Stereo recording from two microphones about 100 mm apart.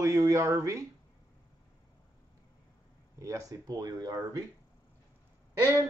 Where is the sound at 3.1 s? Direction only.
30° right (ahead or behind).